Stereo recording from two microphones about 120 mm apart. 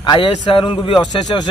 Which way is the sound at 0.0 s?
40° left (ahead or behind).